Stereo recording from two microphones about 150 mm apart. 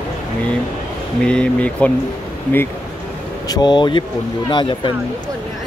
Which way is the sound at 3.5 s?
30° left (ahead or behind).